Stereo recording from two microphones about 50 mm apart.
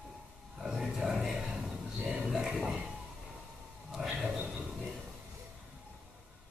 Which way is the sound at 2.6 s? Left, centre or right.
Centre.